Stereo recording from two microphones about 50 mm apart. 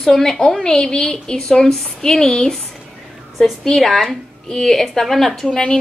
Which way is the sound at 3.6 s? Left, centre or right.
Centre.